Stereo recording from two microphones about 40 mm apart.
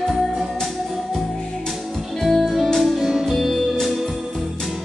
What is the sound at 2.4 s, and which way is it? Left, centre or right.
Music, centre.